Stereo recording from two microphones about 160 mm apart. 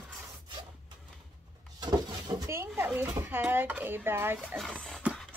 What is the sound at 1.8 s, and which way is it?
Speech, 25° right (ahead or behind).